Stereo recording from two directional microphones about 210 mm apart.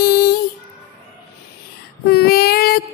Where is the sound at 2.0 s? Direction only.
45° left (ahead or behind).